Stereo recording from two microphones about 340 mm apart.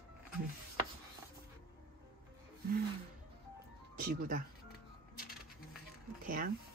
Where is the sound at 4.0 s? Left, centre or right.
Right.